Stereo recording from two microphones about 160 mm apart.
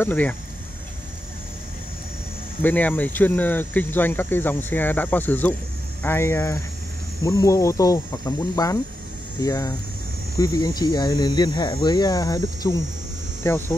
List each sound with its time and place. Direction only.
0.0 s speech: 10° left (ahead or behind)
2.6 s speech: 10° left (ahead or behind)